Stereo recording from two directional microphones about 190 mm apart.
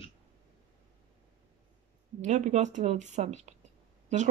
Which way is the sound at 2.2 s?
40° right (ahead or behind).